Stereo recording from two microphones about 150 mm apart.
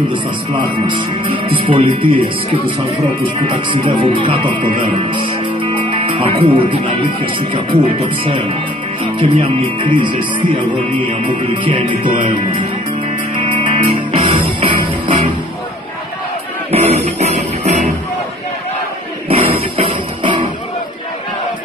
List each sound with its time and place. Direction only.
0.8 s speech: 35° right (ahead or behind)
3.4 s speech: 35° right (ahead or behind)
9.2 s speech: 35° right (ahead or behind)
13.4 s music: 35° right (ahead or behind)
16.7 s music: 45° right (ahead or behind)
19.2 s music: 35° right (ahead or behind)